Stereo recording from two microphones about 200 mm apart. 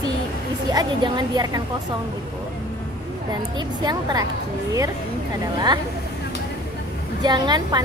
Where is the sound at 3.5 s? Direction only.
20° right (ahead or behind).